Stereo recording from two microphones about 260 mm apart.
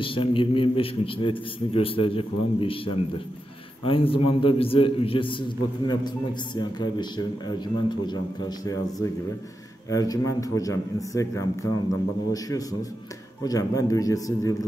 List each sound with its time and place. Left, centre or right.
0.0 s a man's voice: centre